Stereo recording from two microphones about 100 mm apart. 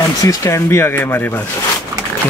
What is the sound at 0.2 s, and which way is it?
Speech, 35° left (ahead or behind).